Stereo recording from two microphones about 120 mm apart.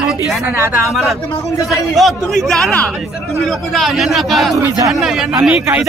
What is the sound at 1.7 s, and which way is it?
Speech, centre (ahead or behind).